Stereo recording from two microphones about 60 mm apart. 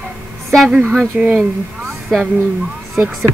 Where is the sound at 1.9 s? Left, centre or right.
Centre.